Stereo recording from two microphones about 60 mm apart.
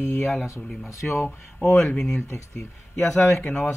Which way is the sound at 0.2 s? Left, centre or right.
Centre.